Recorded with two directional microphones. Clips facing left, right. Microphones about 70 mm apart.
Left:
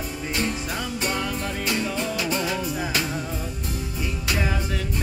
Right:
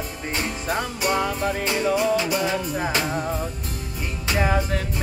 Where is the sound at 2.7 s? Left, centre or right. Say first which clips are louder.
Right 3 dB; right.